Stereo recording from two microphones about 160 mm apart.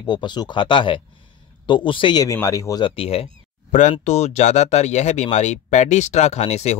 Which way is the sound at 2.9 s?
35° left (ahead or behind).